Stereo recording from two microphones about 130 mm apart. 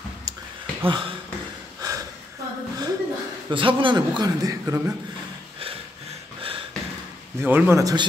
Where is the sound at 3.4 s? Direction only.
40° right (ahead or behind); by 4.9 s 20° right (ahead or behind).